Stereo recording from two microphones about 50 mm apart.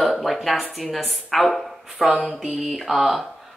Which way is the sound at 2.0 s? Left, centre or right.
Centre.